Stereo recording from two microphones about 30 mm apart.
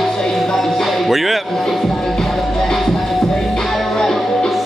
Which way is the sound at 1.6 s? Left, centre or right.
Centre.